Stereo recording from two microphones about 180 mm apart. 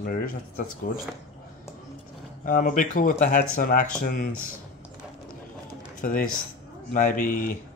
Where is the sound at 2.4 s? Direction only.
45° left (ahead or behind).